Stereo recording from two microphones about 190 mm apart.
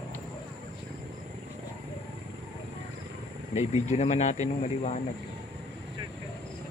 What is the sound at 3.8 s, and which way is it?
Speech, 35° left (ahead or behind).